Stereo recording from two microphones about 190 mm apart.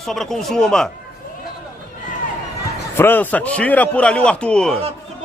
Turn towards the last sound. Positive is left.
turn(degrees=5)  # may be behind; listen again after turning